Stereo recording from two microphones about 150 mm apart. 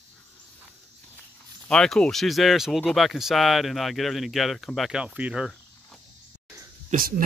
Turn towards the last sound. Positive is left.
turn(degrees=-65)  # may be behind; listen again after turning